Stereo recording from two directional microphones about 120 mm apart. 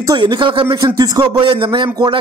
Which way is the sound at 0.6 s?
30° right (ahead or behind).